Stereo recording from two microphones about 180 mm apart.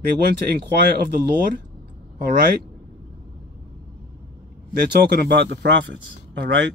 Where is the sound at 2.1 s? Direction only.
55° right (ahead or behind).